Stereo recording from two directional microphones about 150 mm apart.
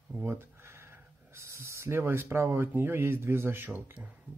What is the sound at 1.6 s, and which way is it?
Speech, 15° right (ahead or behind).